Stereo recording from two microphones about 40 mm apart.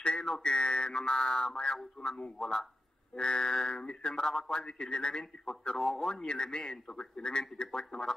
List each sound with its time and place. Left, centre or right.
0.0 s a man's voice: left
4.2 s a man's voice: centre